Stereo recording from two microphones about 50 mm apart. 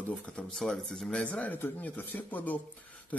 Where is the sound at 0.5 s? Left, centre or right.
Centre.